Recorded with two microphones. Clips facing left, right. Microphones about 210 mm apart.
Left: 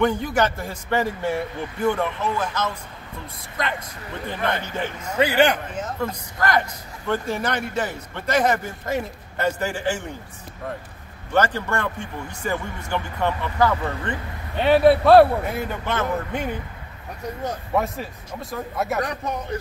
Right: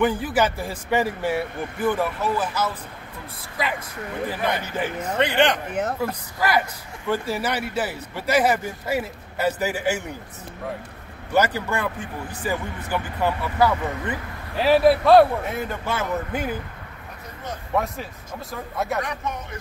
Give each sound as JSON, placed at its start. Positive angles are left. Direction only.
{"t": 0.0, "sound": "a man's voice", "side_deg": -5}
{"t": 5.1, "sound": "speech", "side_deg": 5}
{"t": 5.7, "sound": "speech", "side_deg": -65}
{"t": 6.4, "sound": "a man's voice", "side_deg": -5}
{"t": 11.3, "sound": "a man's voice", "side_deg": -10}
{"t": 15.8, "sound": "a man's voice", "side_deg": -10}
{"t": 17.7, "sound": "a man's voice", "side_deg": 0}
{"t": 18.9, "sound": "a man's voice", "side_deg": 35}